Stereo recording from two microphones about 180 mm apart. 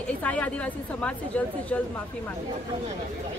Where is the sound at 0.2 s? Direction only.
5° left (ahead or behind).